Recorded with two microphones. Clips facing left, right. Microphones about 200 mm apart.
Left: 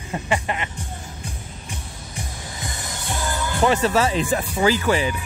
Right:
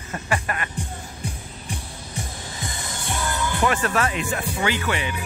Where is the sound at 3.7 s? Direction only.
25° left (ahead or behind).